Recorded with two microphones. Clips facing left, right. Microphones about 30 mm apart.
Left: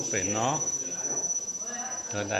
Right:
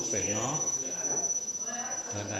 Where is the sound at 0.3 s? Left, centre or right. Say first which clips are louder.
Left 8 dB; centre.